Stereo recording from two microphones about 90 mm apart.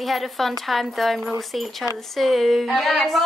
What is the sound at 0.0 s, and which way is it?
A woman's voice, centre (ahead or behind).